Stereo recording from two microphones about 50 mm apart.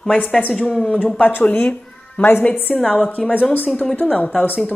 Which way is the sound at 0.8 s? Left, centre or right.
Left.